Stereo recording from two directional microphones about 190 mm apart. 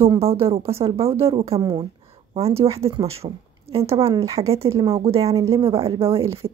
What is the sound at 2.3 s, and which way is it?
Speech, 30° right (ahead or behind).